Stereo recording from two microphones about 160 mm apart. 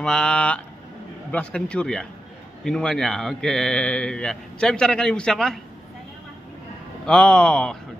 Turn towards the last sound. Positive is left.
turn(degrees=5)  # may be behind; listen again after turning